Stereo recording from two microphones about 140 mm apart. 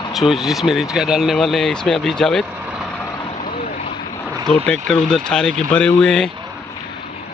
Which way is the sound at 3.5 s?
45° left (ahead or behind).